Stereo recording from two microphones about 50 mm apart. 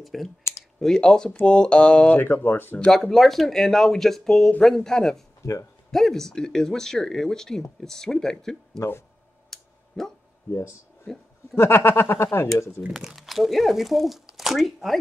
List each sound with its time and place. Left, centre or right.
0.0 s speech: centre
0.7 s speech: centre
2.1 s speech: left
2.9 s speech: centre
5.4 s speech: left
5.9 s speech: centre
9.5 s a sound: centre
11.1 s speech: centre
11.5 s speech: left
12.9 s speech: centre